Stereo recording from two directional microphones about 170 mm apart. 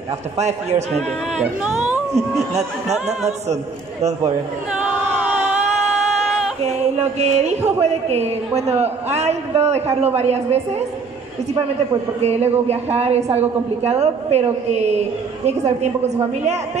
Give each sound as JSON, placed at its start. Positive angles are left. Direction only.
{"t": 0.4, "sound": "a woman's voice", "side_deg": -40}
{"t": 1.4, "sound": "speech", "side_deg": -5}
{"t": 2.9, "sound": "a woman's voice", "side_deg": -40}
{"t": 5.2, "sound": "a sound", "side_deg": -10}
{"t": 7.0, "sound": "a woman's voice", "side_deg": -40}
{"t": 12.2, "sound": "a woman's voice", "side_deg": -40}